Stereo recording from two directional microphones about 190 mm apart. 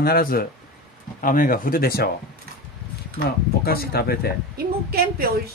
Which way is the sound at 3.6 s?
55° left (ahead or behind).